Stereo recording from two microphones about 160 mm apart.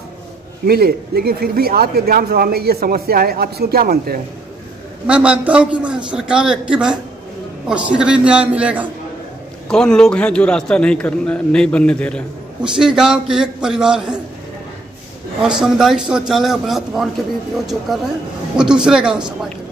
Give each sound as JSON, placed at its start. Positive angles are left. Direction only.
{"t": 0.7, "sound": "speech", "side_deg": -75}
{"t": 5.0, "sound": "a man's voice", "side_deg": -5}
{"t": 9.7, "sound": "a man's voice", "side_deg": 5}
{"t": 15.4, "sound": "a man's voice", "side_deg": -5}
{"t": 18.6, "sound": "a man's voice", "side_deg": -5}